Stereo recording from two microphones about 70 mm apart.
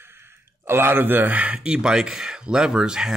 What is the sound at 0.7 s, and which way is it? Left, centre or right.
Speech, right.